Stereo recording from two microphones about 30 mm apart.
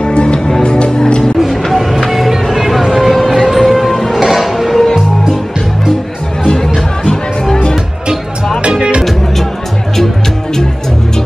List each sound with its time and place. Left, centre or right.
0.0 s music: left
1.5 s music: centre
2.9 s a sound: centre
3.4 s music: centre